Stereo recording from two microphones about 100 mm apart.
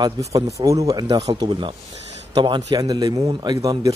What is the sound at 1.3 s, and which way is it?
A man's voice, 55° right (ahead or behind).